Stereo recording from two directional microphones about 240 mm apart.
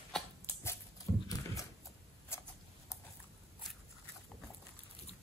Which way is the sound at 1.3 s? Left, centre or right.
Centre.